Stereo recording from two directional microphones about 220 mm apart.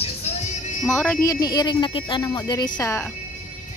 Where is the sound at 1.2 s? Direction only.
15° left (ahead or behind).